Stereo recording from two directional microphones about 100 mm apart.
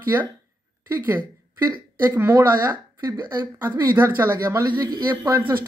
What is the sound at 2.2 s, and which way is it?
A woman's voice, 30° right (ahead or behind).